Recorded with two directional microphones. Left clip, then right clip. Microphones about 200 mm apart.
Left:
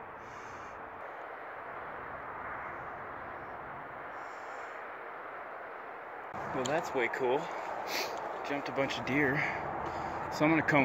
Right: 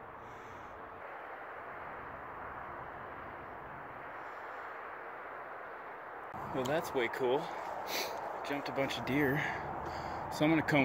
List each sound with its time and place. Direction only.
6.6 s speech: 10° right (ahead or behind)
9.1 s speech: 15° right (ahead or behind)
9.6 s a sound: 35° left (ahead or behind)
10.3 s speech: 5° right (ahead or behind)